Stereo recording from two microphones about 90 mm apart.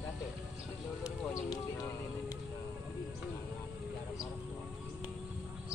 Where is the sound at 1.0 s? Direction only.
40° left (ahead or behind).